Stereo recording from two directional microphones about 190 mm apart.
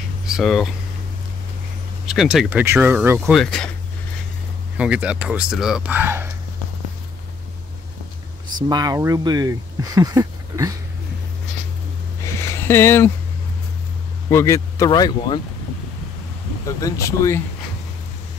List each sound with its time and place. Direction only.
0.3 s speech: centre (ahead or behind)
2.0 s speech: centre (ahead or behind)
4.7 s speech: 5° right (ahead or behind)
8.6 s speech: 20° right (ahead or behind)
12.4 s a sound: 15° left (ahead or behind)
14.3 s speech: 15° left (ahead or behind)
16.6 s speech: 15° left (ahead or behind)